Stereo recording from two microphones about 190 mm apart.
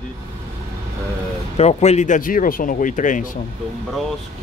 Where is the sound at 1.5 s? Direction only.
35° left (ahead or behind).